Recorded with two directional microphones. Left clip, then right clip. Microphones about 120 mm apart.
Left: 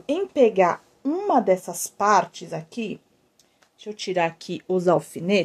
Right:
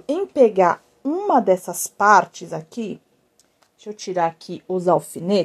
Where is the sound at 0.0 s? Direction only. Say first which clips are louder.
Right 3 dB; 40° right (ahead or behind).